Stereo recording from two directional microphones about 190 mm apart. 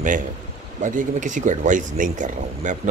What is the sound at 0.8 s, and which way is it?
Speech, 40° right (ahead or behind).